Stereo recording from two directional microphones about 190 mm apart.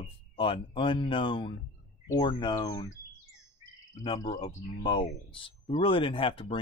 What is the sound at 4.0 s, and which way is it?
Speech, 25° left (ahead or behind).